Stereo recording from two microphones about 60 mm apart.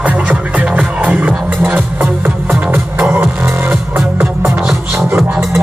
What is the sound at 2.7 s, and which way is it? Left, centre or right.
Music, right.